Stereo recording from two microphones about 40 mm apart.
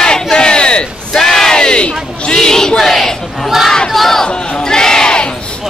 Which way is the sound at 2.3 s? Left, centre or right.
Centre.